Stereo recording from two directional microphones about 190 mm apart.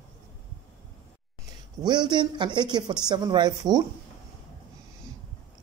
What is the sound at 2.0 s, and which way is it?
Speech, 25° right (ahead or behind).